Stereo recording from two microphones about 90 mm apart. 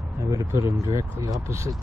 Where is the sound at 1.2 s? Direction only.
40° right (ahead or behind).